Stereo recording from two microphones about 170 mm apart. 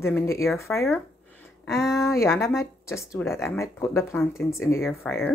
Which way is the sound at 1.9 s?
15° left (ahead or behind).